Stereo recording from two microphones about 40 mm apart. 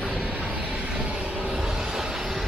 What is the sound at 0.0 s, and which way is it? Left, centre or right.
Vehicle, right.